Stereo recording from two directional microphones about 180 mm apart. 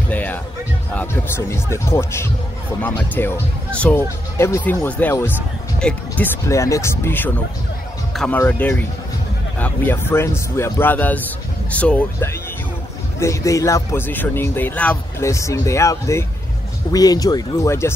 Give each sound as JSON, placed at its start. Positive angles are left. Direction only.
{"t": 0.1, "sound": "music", "side_deg": 10}
{"t": 0.9, "sound": "a man's voice", "side_deg": 10}